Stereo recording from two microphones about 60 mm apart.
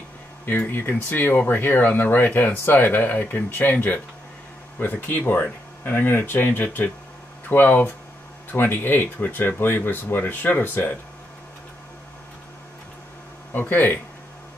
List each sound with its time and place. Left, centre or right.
0.5 s speech: left
13.5 s speech: left